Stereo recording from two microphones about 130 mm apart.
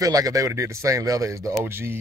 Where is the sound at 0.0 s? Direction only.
25° right (ahead or behind).